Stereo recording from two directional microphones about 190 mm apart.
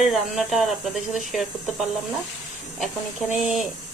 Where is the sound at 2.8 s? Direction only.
5° right (ahead or behind).